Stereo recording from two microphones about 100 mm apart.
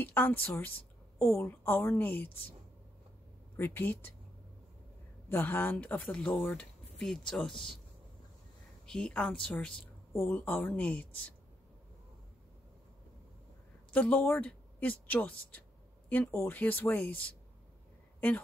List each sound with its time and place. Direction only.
0.0 s speech: 20° left (ahead or behind)
3.5 s speech: 20° left (ahead or behind)
5.3 s speech: 20° left (ahead or behind); by 7.5 s 5° left (ahead or behind)
8.8 s a woman's voice: 10° left (ahead or behind)
13.8 s speech: 15° left (ahead or behind)